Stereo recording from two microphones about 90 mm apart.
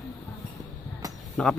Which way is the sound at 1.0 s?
40° right (ahead or behind).